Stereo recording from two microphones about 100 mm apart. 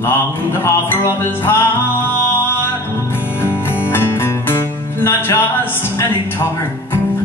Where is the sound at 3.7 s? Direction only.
20° left (ahead or behind).